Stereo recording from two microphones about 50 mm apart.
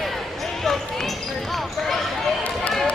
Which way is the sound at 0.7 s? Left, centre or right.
Centre.